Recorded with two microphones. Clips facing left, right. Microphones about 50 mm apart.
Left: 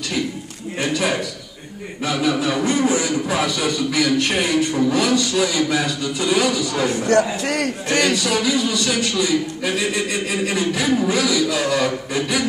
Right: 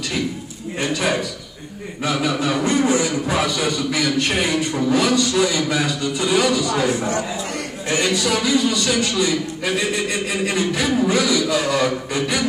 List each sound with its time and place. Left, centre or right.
0.7 s a man's voice: centre
7.1 s a man's voice: left
8.2 s a man's voice: centre
10.3 s a man's voice: centre